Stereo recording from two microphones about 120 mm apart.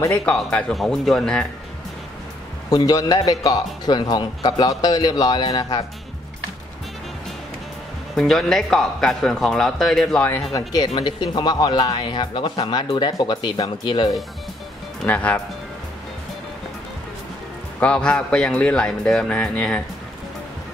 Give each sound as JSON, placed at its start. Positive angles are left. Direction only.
{"t": 0.2, "sound": "a man's voice", "side_deg": 5}
{"t": 2.7, "sound": "speech", "side_deg": 30}
{"t": 8.1, "sound": "a man's voice", "side_deg": 0}
{"t": 10.5, "sound": "speech", "side_deg": 30}
{"t": 10.9, "sound": "speech", "side_deg": 40}
{"t": 15.0, "sound": "a man's voice", "side_deg": 15}
{"t": 17.7, "sound": "a man's voice", "side_deg": 10}